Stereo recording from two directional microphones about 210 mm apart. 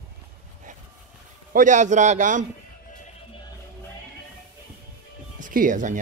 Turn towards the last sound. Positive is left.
turn(degrees=-35)  # may be behind; listen again after turning